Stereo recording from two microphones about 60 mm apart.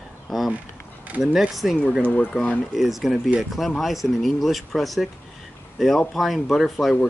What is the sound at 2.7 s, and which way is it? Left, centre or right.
Speech, centre.